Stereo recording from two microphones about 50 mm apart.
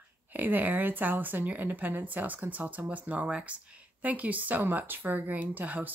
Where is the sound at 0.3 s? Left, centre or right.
Right.